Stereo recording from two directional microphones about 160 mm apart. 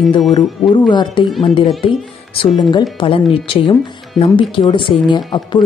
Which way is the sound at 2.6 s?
25° left (ahead or behind).